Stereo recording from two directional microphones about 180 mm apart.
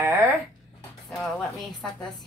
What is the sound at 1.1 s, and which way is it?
Speech, centre (ahead or behind).